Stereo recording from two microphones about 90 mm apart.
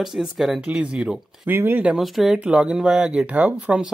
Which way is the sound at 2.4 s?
15° right (ahead or behind).